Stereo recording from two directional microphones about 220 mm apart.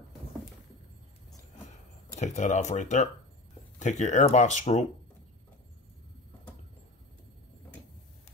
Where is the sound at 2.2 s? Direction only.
30° left (ahead or behind).